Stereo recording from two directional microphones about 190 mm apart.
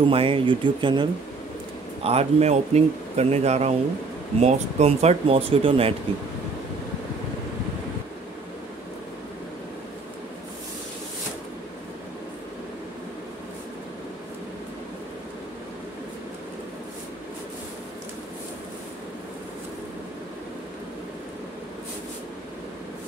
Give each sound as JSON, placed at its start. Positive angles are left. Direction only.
{"t": 0.1, "sound": "speech", "side_deg": -30}
{"t": 2.0, "sound": "speech", "side_deg": -35}